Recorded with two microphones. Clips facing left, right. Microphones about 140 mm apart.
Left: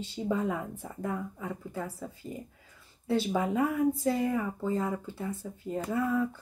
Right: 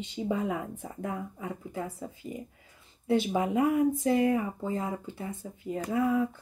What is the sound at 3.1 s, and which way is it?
Speech, 15° right (ahead or behind).